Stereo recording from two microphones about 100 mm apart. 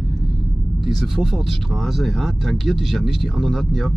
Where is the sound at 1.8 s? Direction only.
Centre (ahead or behind).